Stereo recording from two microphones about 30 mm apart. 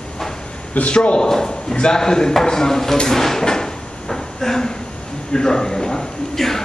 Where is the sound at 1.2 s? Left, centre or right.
Left.